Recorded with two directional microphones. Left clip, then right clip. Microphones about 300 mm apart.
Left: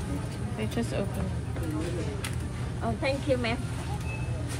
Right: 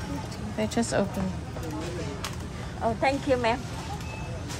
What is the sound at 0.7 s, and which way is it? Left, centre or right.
Speech, centre.